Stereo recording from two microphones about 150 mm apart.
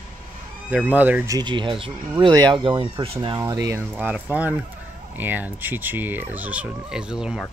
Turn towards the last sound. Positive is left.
turn(degrees=-5)  # may be behind; listen again after turning